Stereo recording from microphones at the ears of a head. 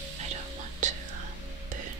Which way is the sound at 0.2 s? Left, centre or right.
Right.